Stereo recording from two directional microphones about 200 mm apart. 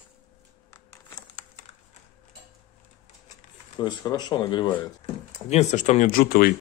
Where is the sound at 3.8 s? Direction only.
20° left (ahead or behind).